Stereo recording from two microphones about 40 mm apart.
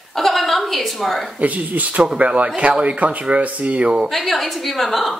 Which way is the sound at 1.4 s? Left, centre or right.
Right.